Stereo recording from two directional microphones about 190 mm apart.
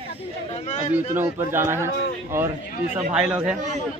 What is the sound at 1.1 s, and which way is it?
Speech, 15° right (ahead or behind).